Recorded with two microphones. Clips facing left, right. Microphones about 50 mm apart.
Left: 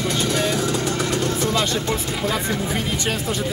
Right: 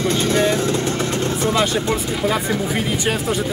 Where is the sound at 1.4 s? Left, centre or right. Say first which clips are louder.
Right 3 dB; right.